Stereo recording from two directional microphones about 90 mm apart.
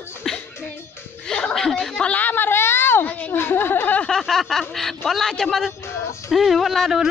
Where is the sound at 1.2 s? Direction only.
5° left (ahead or behind).